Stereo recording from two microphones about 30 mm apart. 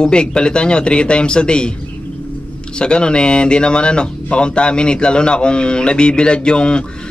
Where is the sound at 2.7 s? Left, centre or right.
Left.